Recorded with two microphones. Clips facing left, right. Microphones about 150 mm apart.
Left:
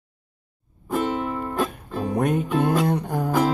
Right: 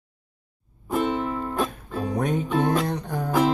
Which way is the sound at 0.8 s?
5° left (ahead or behind).